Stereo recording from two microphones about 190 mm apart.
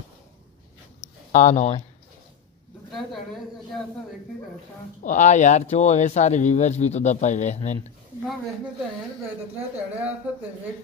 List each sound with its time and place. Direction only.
1.3 s speech: 40° left (ahead or behind)
2.9 s a woman's voice: centre (ahead or behind)
5.0 s speech: 40° left (ahead or behind)
9.6 s speech: 5° right (ahead or behind)